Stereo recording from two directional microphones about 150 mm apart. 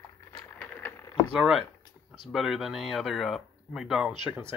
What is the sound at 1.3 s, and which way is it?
Speech, centre (ahead or behind).